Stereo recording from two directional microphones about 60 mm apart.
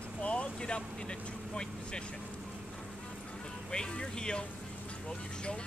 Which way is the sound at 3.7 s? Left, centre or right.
Centre.